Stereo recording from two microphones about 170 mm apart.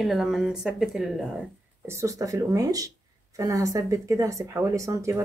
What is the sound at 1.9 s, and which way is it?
Speech, 15° right (ahead or behind).